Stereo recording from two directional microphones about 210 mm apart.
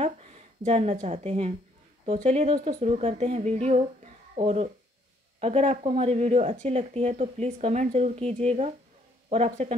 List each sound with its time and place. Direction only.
0.7 s speech: 30° right (ahead or behind)